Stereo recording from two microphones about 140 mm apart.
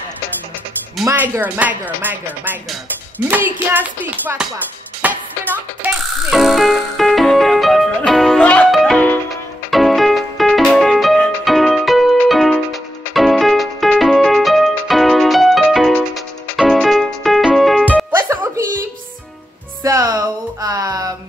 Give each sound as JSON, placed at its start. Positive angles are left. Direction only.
{"t": 1.0, "sound": "speech", "side_deg": -15}
{"t": 5.0, "sound": "music", "side_deg": -15}
{"t": 6.3, "sound": "music", "side_deg": 0}
{"t": 18.1, "sound": "music", "side_deg": -15}
{"t": 19.8, "sound": "music", "side_deg": -25}